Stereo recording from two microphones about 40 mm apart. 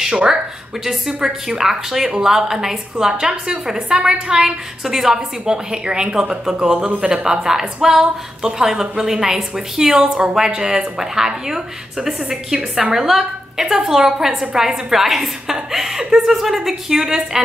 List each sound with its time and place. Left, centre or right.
0.0 s a woman's voice: centre